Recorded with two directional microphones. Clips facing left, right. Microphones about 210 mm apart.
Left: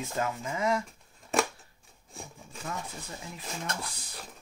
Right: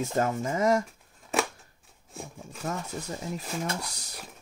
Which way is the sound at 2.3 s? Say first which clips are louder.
Right 5 dB; 45° right (ahead or behind).